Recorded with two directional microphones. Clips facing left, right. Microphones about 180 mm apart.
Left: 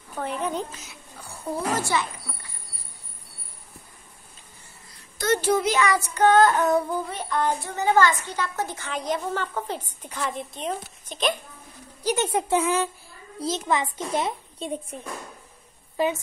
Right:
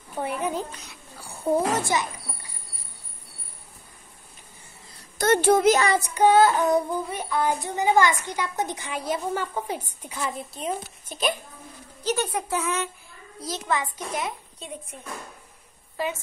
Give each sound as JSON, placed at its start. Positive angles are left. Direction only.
{"t": 0.1, "sound": "a woman's voice", "side_deg": -10}
{"t": 0.7, "sound": "a sound", "side_deg": 0}
{"t": 1.9, "sound": "a woman's voice", "side_deg": -15}
{"t": 5.1, "sound": "a woman's voice", "side_deg": -55}
{"t": 5.9, "sound": "a woman's voice", "side_deg": -15}
{"t": 12.0, "sound": "speech", "side_deg": 10}
{"t": 12.3, "sound": "a child's voice", "side_deg": 25}
{"t": 16.0, "sound": "a child's voice", "side_deg": 20}